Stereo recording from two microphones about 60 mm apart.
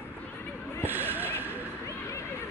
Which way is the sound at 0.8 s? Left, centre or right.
Right.